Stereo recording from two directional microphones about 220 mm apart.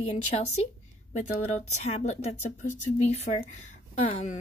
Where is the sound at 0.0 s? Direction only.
30° left (ahead or behind).